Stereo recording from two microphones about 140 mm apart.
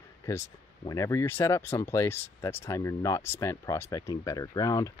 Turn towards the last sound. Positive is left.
turn(degrees=25)  # may be behind; listen again after turning